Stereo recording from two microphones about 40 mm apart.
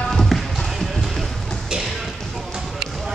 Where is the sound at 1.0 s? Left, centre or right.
Centre.